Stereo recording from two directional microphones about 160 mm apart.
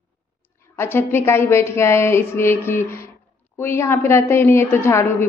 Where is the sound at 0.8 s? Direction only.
15° left (ahead or behind).